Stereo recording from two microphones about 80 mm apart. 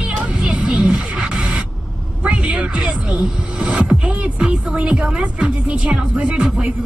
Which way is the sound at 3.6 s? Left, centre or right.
Centre.